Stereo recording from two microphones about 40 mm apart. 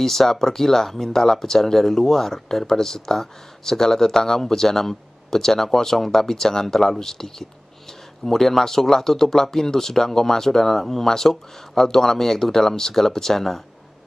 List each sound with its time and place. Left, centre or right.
0.0 s speech: centre